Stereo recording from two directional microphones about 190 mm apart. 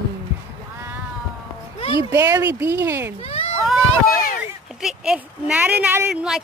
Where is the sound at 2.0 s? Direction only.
20° right (ahead or behind).